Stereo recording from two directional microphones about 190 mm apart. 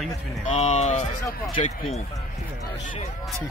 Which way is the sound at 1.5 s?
30° left (ahead or behind).